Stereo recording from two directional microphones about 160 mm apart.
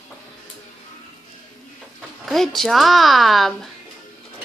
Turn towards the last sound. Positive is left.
turn(degrees=0)  # may be behind; listen again after turning